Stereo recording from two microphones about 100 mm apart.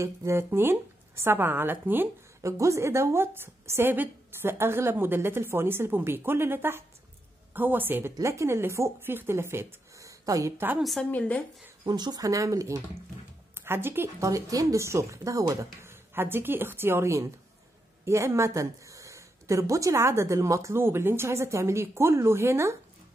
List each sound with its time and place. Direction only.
0.0 s speech: 30° right (ahead or behind)
2.4 s speech: 30° right (ahead or behind)
10.8 s a woman's voice: centre (ahead or behind)
11.1 s speech: 15° left (ahead or behind)
11.8 s speech: 45° right (ahead or behind); by 22.8 s 25° right (ahead or behind)